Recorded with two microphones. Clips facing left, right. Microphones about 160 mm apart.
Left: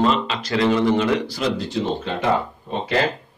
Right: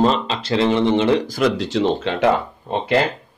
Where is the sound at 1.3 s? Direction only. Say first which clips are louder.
Right 5 dB; 60° right (ahead or behind); by 2.2 s 90° right.